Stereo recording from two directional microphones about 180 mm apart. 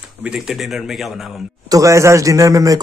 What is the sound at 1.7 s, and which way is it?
A man's voice, 15° right (ahead or behind).